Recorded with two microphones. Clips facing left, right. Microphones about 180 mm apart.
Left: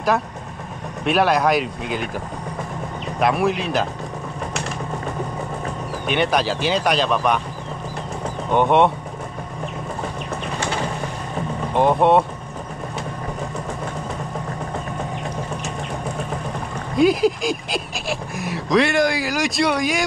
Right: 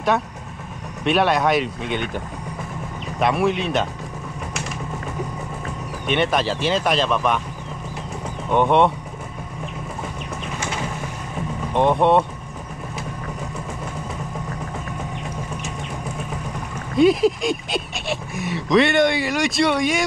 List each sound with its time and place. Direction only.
1.0 s speech: centre (ahead or behind)
3.2 s speech: centre (ahead or behind)
6.0 s speech: centre (ahead or behind)
8.5 s speech: centre (ahead or behind)
10.6 s boat: 35° left (ahead or behind)
11.7 s speech: centre (ahead or behind)
16.9 s speech: centre (ahead or behind)